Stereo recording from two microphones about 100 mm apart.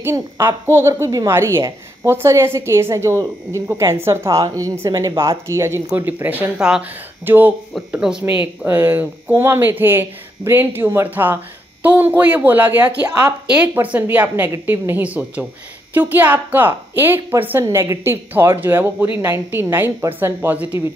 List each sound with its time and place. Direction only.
0.0 s a woman's voice: 25° right (ahead or behind)